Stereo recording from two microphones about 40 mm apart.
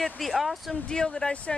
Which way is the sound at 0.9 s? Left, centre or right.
Centre.